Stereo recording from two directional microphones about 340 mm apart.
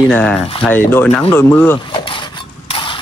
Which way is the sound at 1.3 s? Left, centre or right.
Centre.